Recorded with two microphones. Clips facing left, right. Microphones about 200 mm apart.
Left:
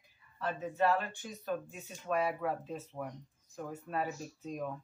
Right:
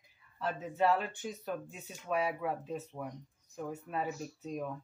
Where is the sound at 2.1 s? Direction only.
10° right (ahead or behind).